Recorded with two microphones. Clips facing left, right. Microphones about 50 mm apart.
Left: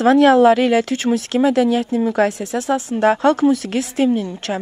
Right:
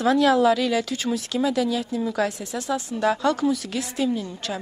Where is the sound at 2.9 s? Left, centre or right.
Left.